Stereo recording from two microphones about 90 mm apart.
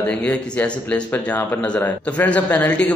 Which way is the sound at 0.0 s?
15° left (ahead or behind).